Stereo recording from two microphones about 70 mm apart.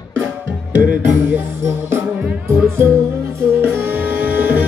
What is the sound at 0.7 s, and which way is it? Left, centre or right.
Music, right.